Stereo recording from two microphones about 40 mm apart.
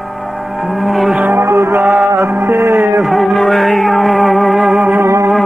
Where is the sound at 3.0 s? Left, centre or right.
Centre.